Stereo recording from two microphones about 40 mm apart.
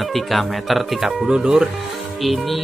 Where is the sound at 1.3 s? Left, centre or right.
Centre.